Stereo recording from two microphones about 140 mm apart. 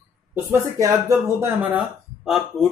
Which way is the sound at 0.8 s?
20° right (ahead or behind).